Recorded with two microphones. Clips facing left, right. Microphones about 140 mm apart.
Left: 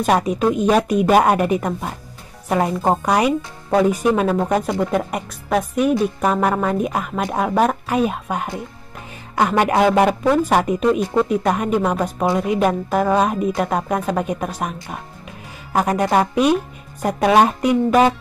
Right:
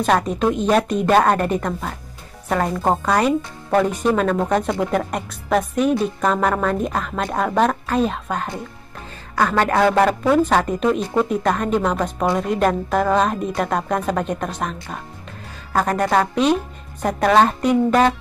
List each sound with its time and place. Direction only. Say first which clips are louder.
0.0 s a woman's voice: left 1 dB; 10° left (ahead or behind)
10.8 s a woman's voice: left 2 dB; centre (ahead or behind)